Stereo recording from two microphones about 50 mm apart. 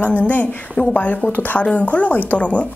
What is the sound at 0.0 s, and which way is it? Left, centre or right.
A woman's voice, left.